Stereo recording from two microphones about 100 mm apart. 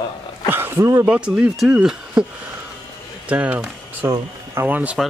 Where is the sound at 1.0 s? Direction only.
10° right (ahead or behind).